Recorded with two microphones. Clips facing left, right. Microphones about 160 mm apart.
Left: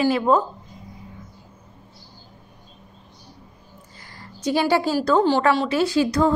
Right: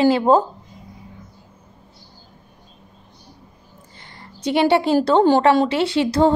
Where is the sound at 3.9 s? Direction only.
25° right (ahead or behind).